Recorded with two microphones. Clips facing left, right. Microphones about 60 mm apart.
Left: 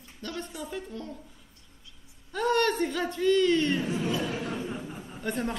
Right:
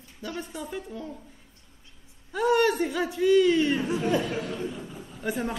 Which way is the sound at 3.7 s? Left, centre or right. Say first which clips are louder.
Right 2 dB; right.